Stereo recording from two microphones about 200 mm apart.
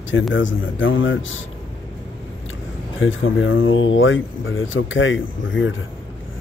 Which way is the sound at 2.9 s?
75° left (ahead or behind).